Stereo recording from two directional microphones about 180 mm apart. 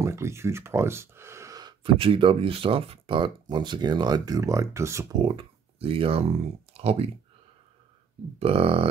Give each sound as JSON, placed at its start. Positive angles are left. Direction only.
{"t": 0.0, "sound": "speech", "side_deg": -15}
{"t": 5.2, "sound": "speech", "side_deg": -30}
{"t": 8.4, "sound": "speech", "side_deg": -30}